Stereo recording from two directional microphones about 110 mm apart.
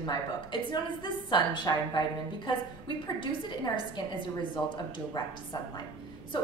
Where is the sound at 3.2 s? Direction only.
45° left (ahead or behind).